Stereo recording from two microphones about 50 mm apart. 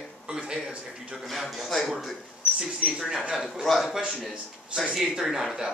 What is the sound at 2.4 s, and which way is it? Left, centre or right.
Speech, centre.